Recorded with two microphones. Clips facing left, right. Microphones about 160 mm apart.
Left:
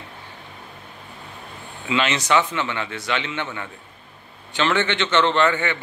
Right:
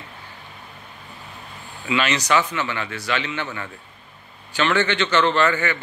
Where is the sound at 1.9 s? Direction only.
25° left (ahead or behind).